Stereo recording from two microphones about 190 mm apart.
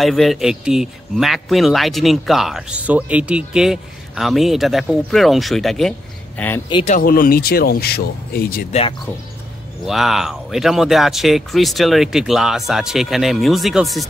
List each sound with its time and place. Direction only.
0.0 s speech: centre (ahead or behind)
6.7 s speech: 35° left (ahead or behind)
7.0 s speech: 50° left (ahead or behind)
9.8 s speech: centre (ahead or behind)